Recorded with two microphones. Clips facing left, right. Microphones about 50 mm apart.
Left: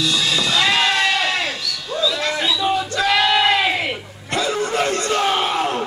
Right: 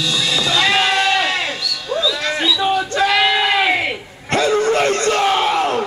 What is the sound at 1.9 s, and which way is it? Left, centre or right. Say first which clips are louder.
Bird: right 1 dB; right.